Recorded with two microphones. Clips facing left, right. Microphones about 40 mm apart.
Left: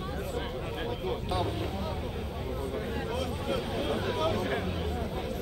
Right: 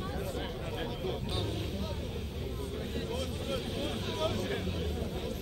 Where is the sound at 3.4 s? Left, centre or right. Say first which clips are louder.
Left 5 dB; left.